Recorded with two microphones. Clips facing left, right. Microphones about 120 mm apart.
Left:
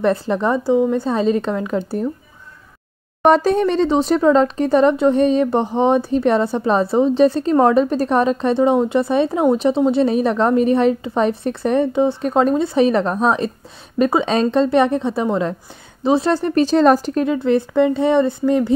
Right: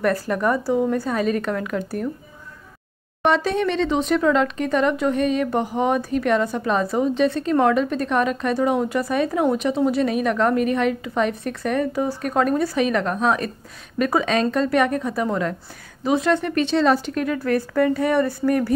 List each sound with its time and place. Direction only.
0.0 s speech: 25° left (ahead or behind)
3.3 s speech: 40° left (ahead or behind); by 18.8 s 20° left (ahead or behind)